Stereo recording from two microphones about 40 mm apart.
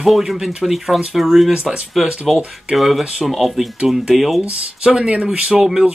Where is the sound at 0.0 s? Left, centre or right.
Centre.